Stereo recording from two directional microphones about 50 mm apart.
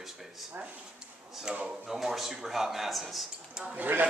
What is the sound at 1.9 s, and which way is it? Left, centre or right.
A man's voice, centre.